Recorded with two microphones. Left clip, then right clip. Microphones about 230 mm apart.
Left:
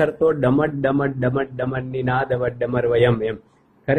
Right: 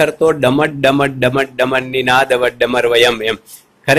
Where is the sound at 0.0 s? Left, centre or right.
Centre.